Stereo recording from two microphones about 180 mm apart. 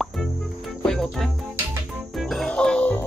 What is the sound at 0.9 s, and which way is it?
Music, centre (ahead or behind).